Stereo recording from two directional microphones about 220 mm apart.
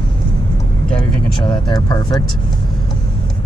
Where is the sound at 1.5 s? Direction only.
20° left (ahead or behind).